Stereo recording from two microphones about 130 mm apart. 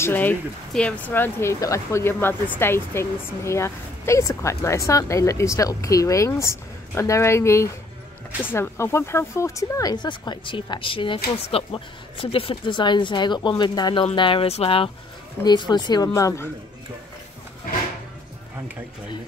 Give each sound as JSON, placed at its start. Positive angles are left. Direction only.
{"t": 0.0, "sound": "speech", "side_deg": 15}
{"t": 15.4, "sound": "speech", "side_deg": 35}